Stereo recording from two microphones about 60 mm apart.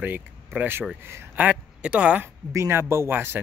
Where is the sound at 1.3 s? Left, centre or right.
Right.